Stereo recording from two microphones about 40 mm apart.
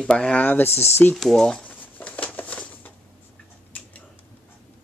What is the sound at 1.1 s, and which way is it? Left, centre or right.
Speech, centre.